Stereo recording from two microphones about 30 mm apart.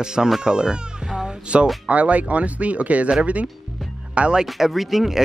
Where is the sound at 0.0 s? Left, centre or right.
Right.